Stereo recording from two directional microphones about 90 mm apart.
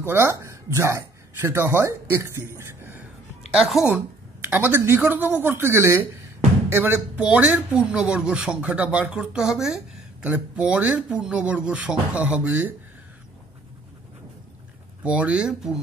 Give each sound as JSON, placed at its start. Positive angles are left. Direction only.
{"t": 0.0, "sound": "speech", "side_deg": -25}
{"t": 3.5, "sound": "a woman's voice", "side_deg": -5}
{"t": 3.9, "sound": "a man's voice", "side_deg": -20}
{"t": 15.0, "sound": "speech", "side_deg": -15}